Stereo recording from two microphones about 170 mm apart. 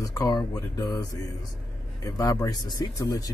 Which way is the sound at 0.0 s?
20° left (ahead or behind).